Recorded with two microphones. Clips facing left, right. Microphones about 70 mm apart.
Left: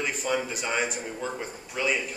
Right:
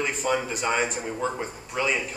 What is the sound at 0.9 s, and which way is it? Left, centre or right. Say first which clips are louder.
A man's voice: right 4 dB; centre.